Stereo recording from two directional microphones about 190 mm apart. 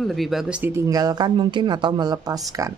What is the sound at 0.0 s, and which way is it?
Speech, centre (ahead or behind).